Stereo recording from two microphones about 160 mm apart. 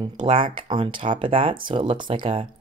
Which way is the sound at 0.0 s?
30° right (ahead or behind).